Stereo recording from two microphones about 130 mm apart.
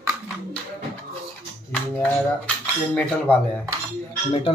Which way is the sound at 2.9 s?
10° left (ahead or behind).